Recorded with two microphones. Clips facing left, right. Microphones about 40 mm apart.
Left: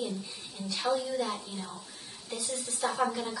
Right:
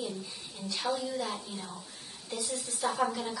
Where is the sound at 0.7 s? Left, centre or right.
Centre.